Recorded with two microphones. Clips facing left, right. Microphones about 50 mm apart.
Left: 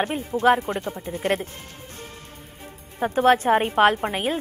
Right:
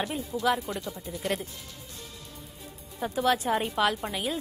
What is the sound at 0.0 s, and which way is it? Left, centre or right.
A woman's voice, left.